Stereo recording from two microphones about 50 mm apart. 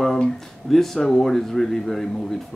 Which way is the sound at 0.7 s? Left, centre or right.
Centre.